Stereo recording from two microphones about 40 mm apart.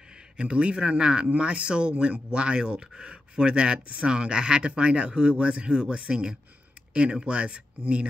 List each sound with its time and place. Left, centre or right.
0.4 s speech: right